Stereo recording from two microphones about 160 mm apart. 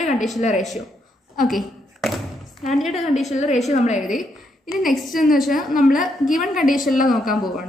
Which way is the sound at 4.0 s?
Centre (ahead or behind).